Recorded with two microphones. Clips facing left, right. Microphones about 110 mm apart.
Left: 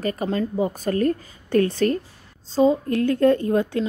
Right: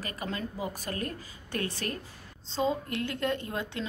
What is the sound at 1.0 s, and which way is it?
Speech, 45° left (ahead or behind).